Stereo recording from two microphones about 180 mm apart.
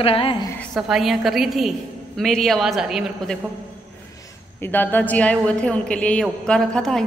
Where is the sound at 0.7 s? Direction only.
Centre (ahead or behind).